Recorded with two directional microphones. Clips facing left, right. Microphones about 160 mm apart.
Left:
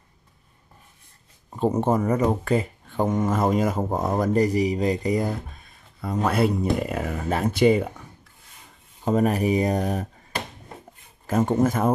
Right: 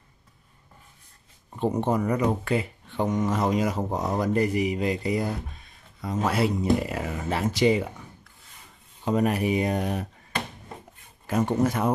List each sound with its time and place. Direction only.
1.6 s speech: 45° left (ahead or behind)
4.3 s speech: 35° left (ahead or behind)
5.9 s speech: 55° left (ahead or behind)
9.0 s speech: 45° left (ahead or behind)
11.2 s speech: 45° left (ahead or behind)